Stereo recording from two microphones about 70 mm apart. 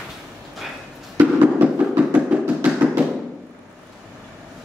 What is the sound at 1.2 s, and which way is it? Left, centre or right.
Music, right.